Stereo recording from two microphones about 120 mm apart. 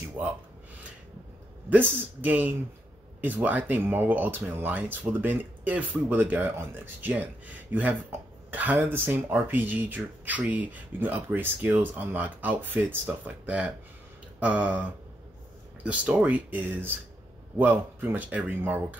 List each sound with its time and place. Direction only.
1.7 s speech: 15° right (ahead or behind)